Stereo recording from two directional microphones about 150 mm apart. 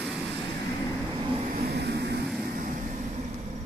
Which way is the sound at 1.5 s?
90° right.